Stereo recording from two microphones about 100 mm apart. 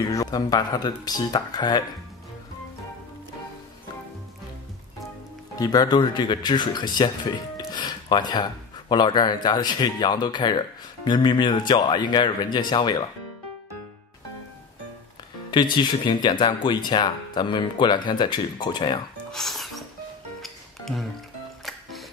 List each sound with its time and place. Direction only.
0.1 s speech: 40° left (ahead or behind)
5.6 s speech: 45° left (ahead or behind)
15.5 s speech: 50° left (ahead or behind)
19.3 s music: centre (ahead or behind)